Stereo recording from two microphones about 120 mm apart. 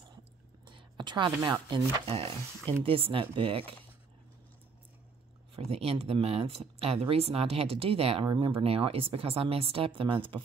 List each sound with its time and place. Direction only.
0.7 s speech: 40° right (ahead or behind)
5.6 s speech: 55° right (ahead or behind)